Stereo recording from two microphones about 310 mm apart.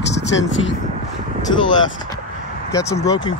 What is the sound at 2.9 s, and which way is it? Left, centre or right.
Speech, centre.